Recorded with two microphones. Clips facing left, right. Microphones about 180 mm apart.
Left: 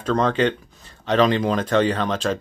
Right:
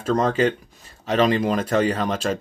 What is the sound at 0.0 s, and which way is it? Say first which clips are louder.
Speech: even; 10° right (ahead or behind).